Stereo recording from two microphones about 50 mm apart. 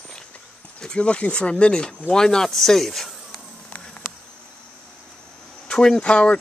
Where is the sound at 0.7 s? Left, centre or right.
Centre.